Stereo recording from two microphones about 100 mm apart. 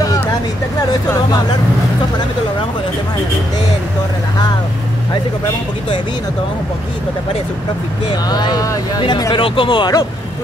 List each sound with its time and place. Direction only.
8.3 s speech: 45° left (ahead or behind)
9.3 s speech: 55° left (ahead or behind)